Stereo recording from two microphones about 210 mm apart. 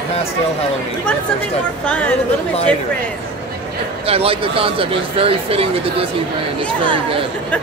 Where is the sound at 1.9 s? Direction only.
5° left (ahead or behind).